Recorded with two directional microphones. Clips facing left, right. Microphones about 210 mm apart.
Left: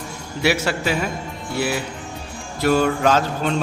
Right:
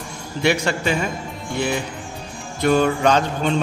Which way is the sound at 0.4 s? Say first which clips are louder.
Right 1 dB; 5° left (ahead or behind).